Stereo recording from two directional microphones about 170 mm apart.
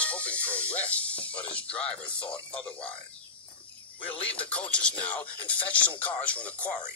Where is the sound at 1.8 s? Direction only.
35° left (ahead or behind).